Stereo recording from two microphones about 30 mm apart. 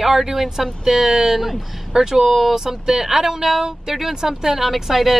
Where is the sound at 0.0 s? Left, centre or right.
Centre.